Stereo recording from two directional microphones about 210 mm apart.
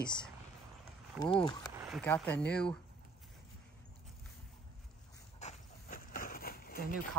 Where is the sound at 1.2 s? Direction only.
25° left (ahead or behind).